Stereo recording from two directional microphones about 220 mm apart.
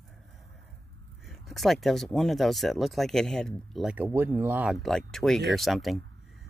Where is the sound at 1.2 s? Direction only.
Centre (ahead or behind).